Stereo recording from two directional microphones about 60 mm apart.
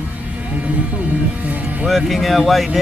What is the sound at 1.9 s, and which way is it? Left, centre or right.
Speech, centre.